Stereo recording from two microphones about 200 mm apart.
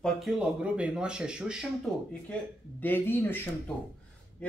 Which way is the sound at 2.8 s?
10° left (ahead or behind).